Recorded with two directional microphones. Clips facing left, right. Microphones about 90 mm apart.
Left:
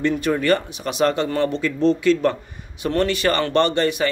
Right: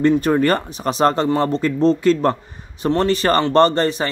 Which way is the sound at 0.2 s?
40° right (ahead or behind).